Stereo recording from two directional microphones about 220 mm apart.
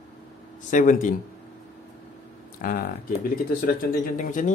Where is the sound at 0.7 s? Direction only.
35° left (ahead or behind).